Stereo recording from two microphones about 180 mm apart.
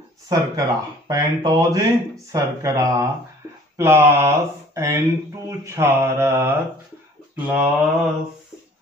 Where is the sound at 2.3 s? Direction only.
15° right (ahead or behind).